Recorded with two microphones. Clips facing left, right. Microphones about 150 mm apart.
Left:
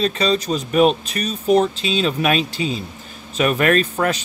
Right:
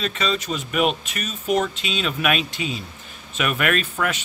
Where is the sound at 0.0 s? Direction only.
35° left (ahead or behind).